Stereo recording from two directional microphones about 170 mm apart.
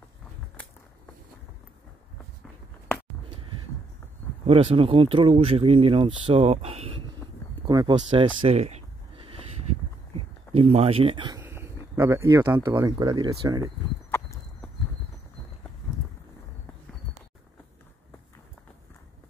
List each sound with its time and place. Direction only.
4.5 s speech: 35° right (ahead or behind)
7.6 s a sound: 25° right (ahead or behind)
11.4 s speech: 15° right (ahead or behind)
14.1 s horse: 15° left (ahead or behind)